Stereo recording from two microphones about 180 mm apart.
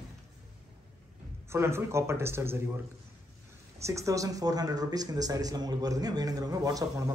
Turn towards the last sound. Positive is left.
turn(degrees=-20)  # may be behind; listen again after turning